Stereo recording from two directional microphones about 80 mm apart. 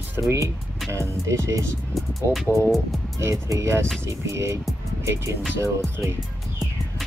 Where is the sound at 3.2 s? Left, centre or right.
Right.